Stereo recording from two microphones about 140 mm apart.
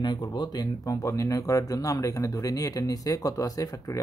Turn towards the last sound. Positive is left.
turn(degrees=25)  # may be behind; listen again after turning